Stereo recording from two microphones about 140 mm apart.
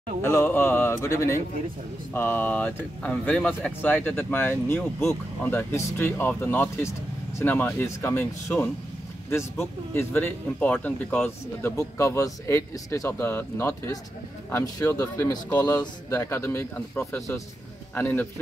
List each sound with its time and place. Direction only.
0.2 s a man's voice: 15° left (ahead or behind)